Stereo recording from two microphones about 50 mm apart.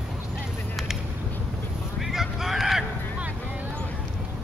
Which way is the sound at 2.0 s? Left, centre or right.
Centre.